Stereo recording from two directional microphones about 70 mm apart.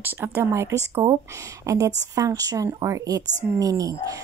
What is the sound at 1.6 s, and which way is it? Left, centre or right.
A woman's voice, right.